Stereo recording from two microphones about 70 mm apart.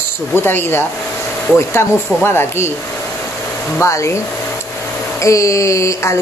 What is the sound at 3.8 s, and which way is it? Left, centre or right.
Speech, left.